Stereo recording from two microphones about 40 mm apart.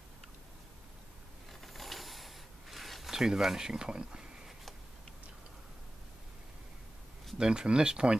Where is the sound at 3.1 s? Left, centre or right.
Centre.